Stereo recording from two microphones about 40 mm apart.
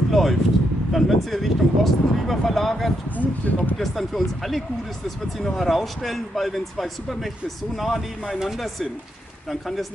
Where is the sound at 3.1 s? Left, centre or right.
Left.